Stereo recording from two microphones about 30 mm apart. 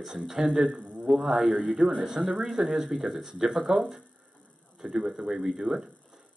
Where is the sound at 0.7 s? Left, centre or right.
Right.